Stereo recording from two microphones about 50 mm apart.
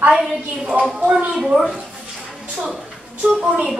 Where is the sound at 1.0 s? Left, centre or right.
Right.